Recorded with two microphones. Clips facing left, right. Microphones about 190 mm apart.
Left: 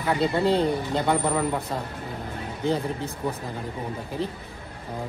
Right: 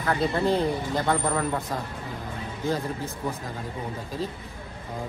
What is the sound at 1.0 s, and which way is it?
Speech, 10° left (ahead or behind).